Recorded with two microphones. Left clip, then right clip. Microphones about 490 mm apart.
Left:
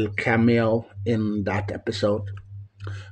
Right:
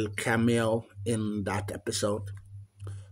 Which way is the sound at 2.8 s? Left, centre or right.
Right.